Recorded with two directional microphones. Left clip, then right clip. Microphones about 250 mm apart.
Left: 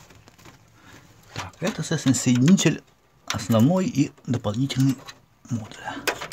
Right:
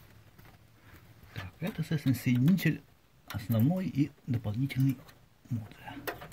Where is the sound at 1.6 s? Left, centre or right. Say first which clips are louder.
Left 10 dB; centre.